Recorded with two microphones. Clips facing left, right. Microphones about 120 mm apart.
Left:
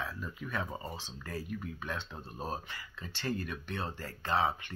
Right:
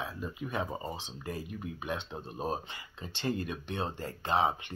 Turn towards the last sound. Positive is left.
turn(degrees=-20)  # may be behind; listen again after turning